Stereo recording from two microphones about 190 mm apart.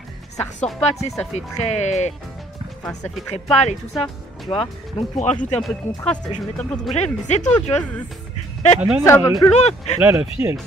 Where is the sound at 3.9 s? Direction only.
Centre (ahead or behind).